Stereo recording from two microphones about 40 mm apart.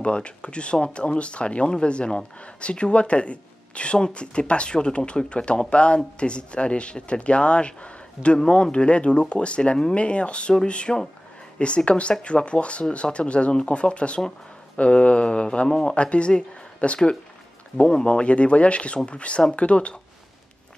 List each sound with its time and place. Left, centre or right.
0.0 s speech: left